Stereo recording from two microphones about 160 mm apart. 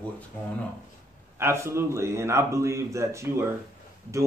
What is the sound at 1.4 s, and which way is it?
A man's voice, 15° right (ahead or behind).